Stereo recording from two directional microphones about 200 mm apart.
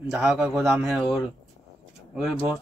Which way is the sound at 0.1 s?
5° right (ahead or behind).